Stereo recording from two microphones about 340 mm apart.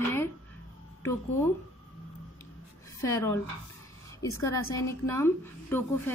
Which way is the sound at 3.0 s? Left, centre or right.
Centre.